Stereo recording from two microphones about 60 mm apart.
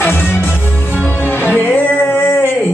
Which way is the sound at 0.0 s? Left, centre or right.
Left.